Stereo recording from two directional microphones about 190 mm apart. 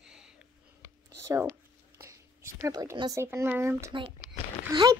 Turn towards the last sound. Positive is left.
turn(degrees=-20)  # may be behind; listen again after turning